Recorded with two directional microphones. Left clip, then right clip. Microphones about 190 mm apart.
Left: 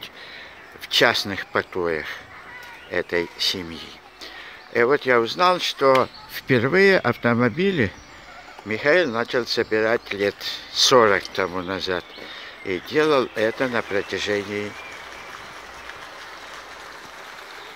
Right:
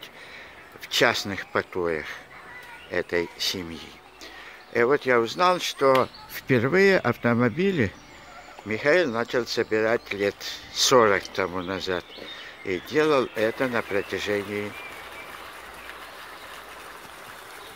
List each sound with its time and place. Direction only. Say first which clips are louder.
0.8 s speech: left 4 dB; 5° left (ahead or behind)